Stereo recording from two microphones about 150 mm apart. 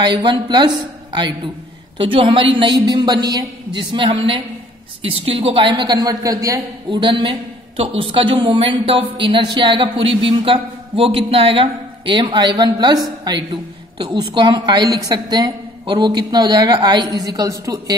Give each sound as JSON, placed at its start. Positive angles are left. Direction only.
{"t": 0.0, "sound": "a woman's voice", "side_deg": -30}